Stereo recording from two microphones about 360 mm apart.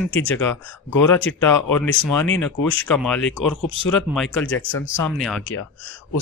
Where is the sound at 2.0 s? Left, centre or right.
Centre.